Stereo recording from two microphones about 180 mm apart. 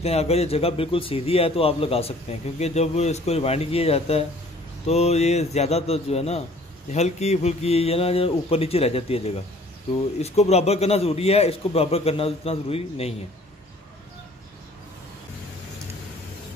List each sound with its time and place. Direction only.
0.0 s a man's voice: 35° left (ahead or behind)